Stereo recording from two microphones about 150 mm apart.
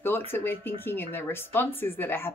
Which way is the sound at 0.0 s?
15° left (ahead or behind).